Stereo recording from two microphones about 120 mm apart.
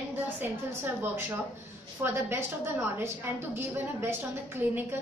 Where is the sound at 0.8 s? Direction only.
15° right (ahead or behind).